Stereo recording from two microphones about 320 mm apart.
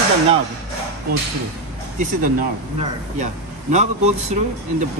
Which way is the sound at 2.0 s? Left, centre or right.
Right.